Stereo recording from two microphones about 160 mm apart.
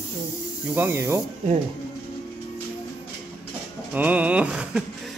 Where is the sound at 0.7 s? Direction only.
15° right (ahead or behind).